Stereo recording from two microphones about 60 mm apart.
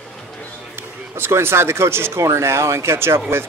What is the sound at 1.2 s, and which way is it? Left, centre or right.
Speech, right.